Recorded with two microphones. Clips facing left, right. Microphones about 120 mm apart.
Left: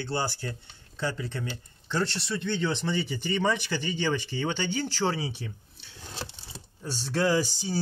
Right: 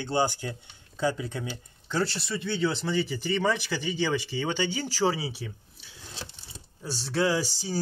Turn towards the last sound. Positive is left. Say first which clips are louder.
# left 2 dB
turn(degrees=-5)  # may be behind; listen again after turning